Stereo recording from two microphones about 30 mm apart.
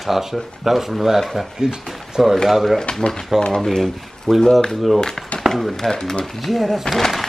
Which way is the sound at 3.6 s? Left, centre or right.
Centre.